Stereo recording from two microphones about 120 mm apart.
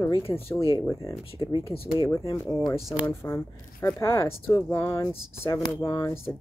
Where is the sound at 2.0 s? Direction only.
25° left (ahead or behind).